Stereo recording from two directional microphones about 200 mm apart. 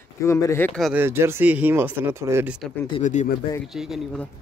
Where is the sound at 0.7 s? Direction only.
Centre (ahead or behind).